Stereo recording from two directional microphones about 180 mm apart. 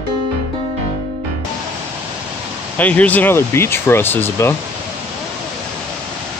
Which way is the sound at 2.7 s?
10° left (ahead or behind).